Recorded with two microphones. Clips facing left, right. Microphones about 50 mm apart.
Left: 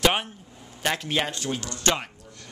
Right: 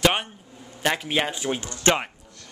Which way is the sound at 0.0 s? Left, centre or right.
Centre.